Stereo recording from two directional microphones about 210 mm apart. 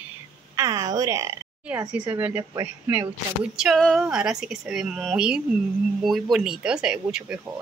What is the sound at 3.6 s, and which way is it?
A woman's voice, centre (ahead or behind).